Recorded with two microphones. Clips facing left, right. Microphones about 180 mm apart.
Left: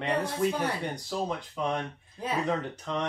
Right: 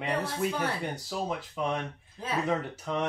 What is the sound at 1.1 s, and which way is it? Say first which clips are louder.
Speech: left 2 dB; 5° right (ahead or behind).